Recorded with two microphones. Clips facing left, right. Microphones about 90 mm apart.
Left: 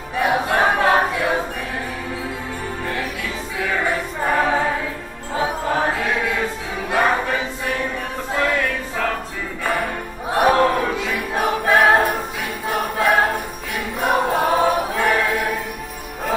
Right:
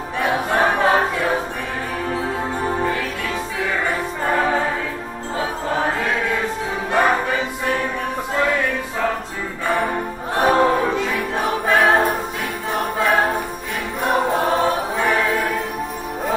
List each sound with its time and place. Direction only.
0.2 s choir: 10° left (ahead or behind)
3.8 s choir: 5° left (ahead or behind)
8.3 s music: 5° right (ahead or behind)
10.6 s choir: 20° right (ahead or behind)
11.0 s music: 10° left (ahead or behind)
12.6 s choir: 5° left (ahead or behind)
14.0 s music: 5° left (ahead or behind)